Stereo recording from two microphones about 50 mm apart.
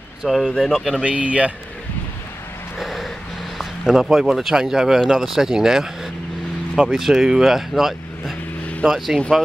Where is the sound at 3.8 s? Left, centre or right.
Centre.